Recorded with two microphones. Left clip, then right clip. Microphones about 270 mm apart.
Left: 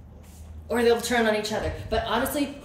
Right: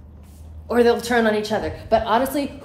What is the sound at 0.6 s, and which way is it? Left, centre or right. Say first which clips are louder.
A woman's voice: right 5 dB; centre.